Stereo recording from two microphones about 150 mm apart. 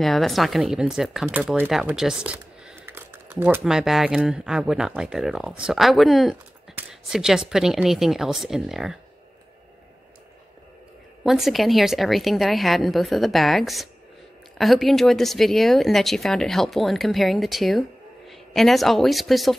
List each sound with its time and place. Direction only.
0.0 s speech: centre (ahead or behind)
11.2 s speech: centre (ahead or behind)